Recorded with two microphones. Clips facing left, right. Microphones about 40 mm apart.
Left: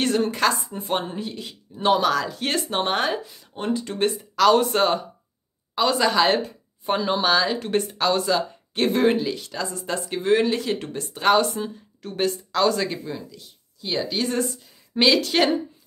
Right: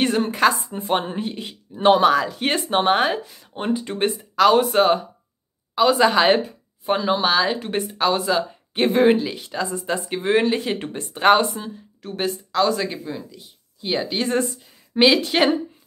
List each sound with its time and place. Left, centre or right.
0.0 s a sound: centre
0.3 s speech: centre
1.0 s speech: right
6.4 s speech: centre; by 11.4 s right
11.5 s speech: centre
13.7 s speech: right
15.0 s speech: centre